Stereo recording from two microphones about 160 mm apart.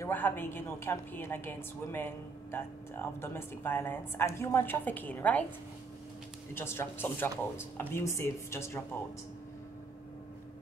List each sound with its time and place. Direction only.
0.0 s a woman's voice: 10° left (ahead or behind)
6.5 s a woman's voice: 15° left (ahead or behind)